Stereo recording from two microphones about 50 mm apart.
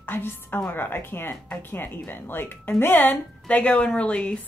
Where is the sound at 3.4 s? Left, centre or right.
Left.